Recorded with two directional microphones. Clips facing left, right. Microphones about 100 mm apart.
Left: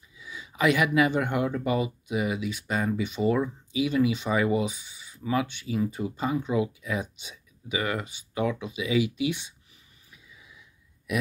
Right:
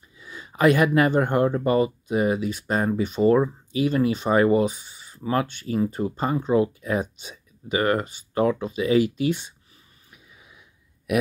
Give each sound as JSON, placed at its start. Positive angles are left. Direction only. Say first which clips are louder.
{"t": 0.2, "sound": "speech", "louder": "right 6 dB", "side_deg": -50}
{"t": 10.1, "sound": "wheeze", "louder": "right 1 dB", "side_deg": -60}
{"t": 11.1, "sound": "burping", "louder": "right 7 dB", "side_deg": -60}